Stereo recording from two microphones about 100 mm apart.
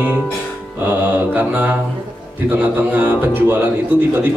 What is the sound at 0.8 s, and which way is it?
Mantra, 20° right (ahead or behind).